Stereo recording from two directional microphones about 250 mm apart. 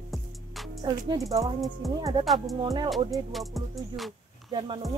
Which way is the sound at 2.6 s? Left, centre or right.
Centre.